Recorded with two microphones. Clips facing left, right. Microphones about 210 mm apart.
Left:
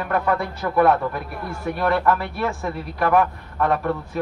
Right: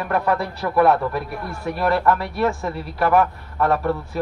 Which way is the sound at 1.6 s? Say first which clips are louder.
Right 1 dB; centre (ahead or behind).